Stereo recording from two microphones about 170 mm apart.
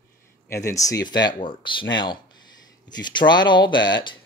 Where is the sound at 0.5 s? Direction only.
20° left (ahead or behind).